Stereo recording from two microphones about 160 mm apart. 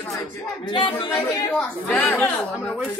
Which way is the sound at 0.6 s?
35° left (ahead or behind).